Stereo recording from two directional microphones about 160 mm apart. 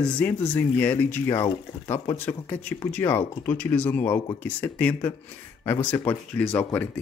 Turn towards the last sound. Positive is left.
turn(degrees=10)  # may be behind; listen again after turning